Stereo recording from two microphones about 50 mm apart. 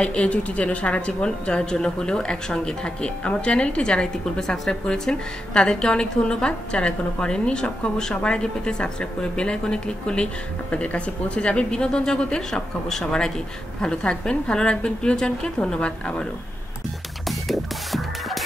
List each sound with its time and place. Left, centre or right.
0.0 s a woman's voice: left
17.3 s music: centre